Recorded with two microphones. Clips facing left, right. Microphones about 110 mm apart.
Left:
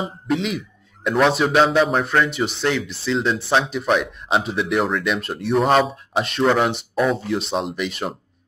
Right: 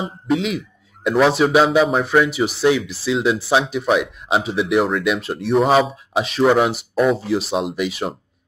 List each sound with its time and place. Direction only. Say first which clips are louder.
0.0 s speech: right 2 dB; centre (ahead or behind)